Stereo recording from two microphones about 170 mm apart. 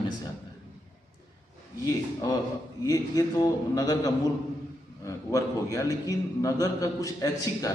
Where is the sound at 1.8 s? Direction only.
20° left (ahead or behind).